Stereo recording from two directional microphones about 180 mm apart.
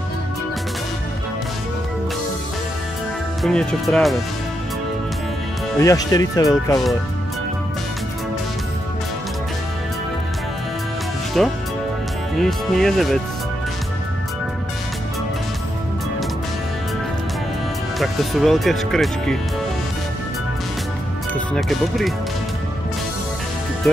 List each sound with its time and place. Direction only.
3.4 s speech: 5° left (ahead or behind)
5.8 s speech: 20° left (ahead or behind)
11.4 s speech: centre (ahead or behind)
17.9 s speech: centre (ahead or behind)
21.3 s speech: centre (ahead or behind)